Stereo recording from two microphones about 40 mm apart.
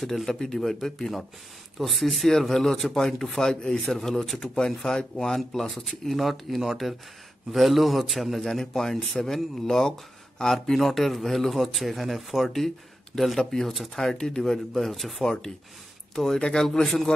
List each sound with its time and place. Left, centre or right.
0.0 s a man's voice: centre
14.9 s a man's voice: centre
16.5 s a man's voice: centre